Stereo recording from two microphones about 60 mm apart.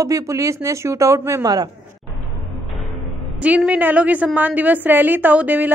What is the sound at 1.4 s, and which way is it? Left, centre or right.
Speech, right.